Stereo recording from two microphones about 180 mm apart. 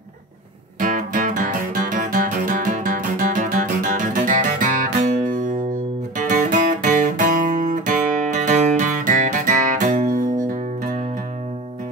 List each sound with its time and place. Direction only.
0.7 s music: 50° right (ahead or behind)